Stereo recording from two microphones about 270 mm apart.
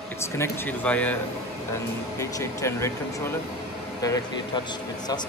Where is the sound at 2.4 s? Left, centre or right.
Centre.